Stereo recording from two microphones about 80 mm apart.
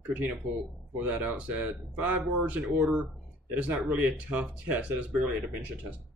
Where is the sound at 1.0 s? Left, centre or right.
Centre.